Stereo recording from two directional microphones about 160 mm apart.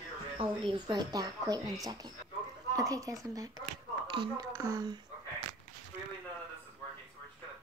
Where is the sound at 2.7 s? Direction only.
20° right (ahead or behind).